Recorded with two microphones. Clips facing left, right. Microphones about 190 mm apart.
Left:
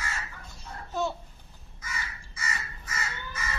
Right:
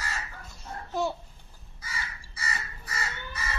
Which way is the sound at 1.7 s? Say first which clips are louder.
Even; 35° right (ahead or behind).